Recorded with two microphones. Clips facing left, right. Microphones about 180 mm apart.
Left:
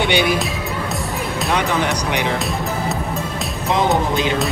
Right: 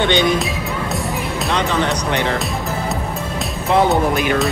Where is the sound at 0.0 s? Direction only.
10° left (ahead or behind).